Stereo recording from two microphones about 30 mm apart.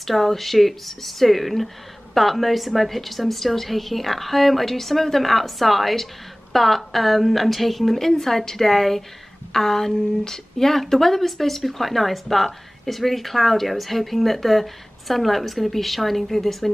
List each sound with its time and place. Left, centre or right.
0.0 s speech: centre